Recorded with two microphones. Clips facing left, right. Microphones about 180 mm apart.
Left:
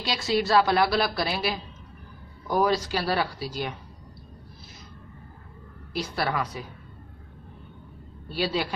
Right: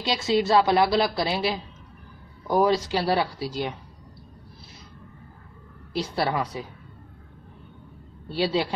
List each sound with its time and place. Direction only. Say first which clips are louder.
0.0 s a woman's voice: right 3 dB; 25° right (ahead or behind)
5.9 s a woman's voice: right 2 dB; 25° right (ahead or behind)
8.3 s a woman's voice: right 3 dB; 25° right (ahead or behind)